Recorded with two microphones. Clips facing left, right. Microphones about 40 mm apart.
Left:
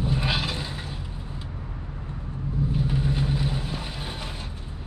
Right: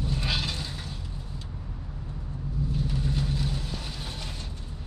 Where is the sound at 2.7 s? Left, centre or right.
Left.